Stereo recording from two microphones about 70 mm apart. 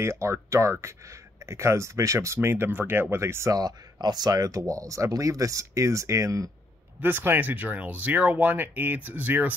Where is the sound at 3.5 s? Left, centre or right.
Right.